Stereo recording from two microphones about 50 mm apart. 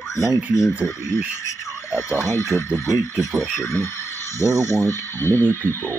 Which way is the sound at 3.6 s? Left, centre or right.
Left.